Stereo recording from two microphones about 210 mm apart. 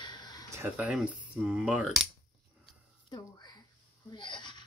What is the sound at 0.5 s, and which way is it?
Speech, 10° right (ahead or behind).